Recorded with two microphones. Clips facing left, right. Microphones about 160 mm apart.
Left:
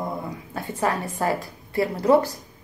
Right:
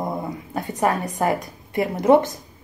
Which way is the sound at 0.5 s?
20° right (ahead or behind).